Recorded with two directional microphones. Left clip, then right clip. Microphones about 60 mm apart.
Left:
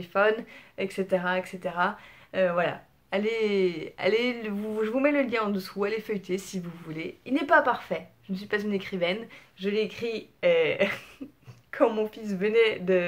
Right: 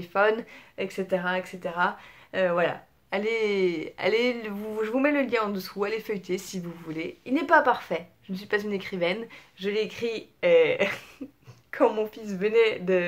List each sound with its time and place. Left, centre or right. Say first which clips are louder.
0.0 s speech: right 1 dB; right
0.7 s speech: left 1 dB; centre
2.3 s speech: right 1 dB; right
2.7 s speech: even; centre
7.6 s speech: right 2 dB; right
8.5 s speech: right 1 dB; right
11.7 s a woman's voice: right 1 dB; centre